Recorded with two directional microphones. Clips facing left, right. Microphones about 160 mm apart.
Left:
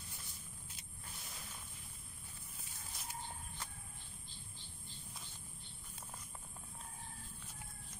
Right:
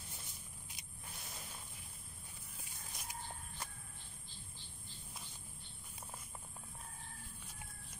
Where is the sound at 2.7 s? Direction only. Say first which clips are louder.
Left 1 dB; 15° right (ahead or behind).